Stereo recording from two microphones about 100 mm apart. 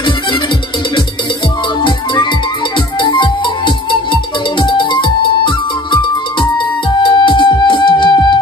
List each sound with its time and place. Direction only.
1.8 s music: 55° left (ahead or behind)
7.0 s music: 55° left (ahead or behind)